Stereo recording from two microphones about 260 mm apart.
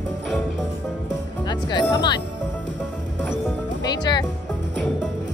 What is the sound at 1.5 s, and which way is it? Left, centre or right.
Music, centre.